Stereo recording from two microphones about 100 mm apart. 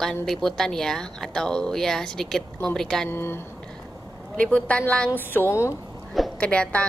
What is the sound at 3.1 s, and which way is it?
Speech, 25° left (ahead or behind).